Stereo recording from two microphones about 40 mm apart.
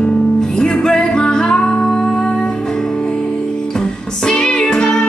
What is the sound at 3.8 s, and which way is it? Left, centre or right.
Music, centre.